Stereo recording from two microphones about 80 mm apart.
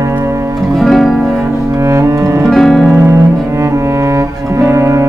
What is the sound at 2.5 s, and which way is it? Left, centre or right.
Music, centre.